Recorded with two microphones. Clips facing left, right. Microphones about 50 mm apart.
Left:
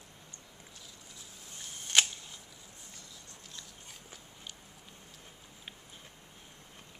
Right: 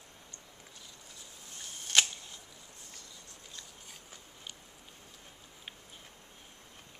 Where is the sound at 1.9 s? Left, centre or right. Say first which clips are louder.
Even; centre.